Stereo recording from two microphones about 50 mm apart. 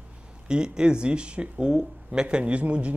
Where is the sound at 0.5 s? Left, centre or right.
Centre.